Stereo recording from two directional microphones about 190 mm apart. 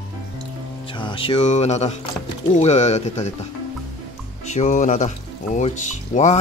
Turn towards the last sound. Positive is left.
turn(degrees=40)  # may be behind; listen again after turning